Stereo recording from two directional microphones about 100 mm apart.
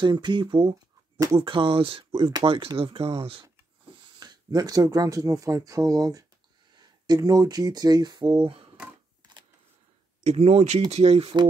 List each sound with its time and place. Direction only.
0.0 s speech: 50° right (ahead or behind); by 2.7 s 65° right (ahead or behind)
2.8 s speech: 75° right (ahead or behind)
4.2 s speech: 40° right (ahead or behind)
10.2 s speech: 90° right